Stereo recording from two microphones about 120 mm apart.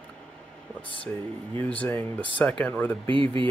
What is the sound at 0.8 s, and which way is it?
Speech, 45° left (ahead or behind).